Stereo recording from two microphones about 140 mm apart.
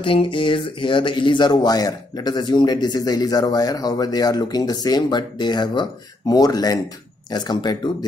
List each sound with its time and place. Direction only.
0.0 s speech: 40° left (ahead or behind)